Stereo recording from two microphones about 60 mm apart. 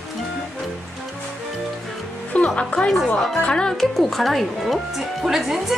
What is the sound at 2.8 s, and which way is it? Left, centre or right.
Speech, centre.